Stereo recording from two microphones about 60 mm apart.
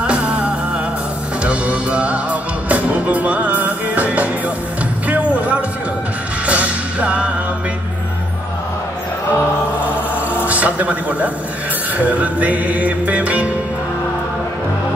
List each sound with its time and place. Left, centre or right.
0.0 s music: centre
10.4 s speech: right
12.0 s music: right